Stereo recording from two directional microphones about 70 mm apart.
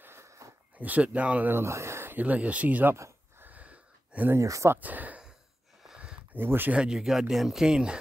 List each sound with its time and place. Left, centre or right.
0.0 s a sound: right
0.7 s speech: right
1.5 s speech: right
2.1 s speech: right
2.9 s a sound: right
4.4 s speech: right
4.7 s a sound: right
6.3 s speech: right
6.8 s speech: centre